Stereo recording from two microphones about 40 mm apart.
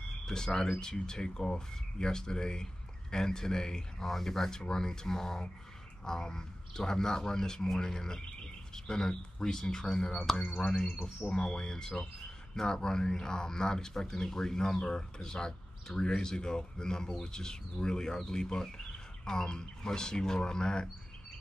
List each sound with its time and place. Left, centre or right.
0.3 s speech: centre
10.4 s speech: left
11.4 s speech: centre